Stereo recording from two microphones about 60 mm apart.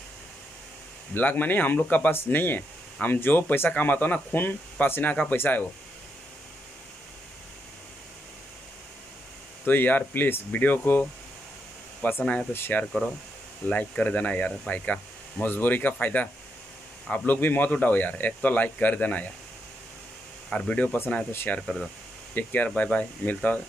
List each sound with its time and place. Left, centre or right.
1.1 s speech: left
9.7 s speech: left
13.7 s speech: left
17.3 s speech: left
20.4 s speech: centre
22.3 s speech: left